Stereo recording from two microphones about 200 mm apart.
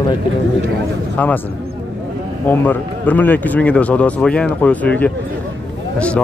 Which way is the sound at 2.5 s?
10° left (ahead or behind).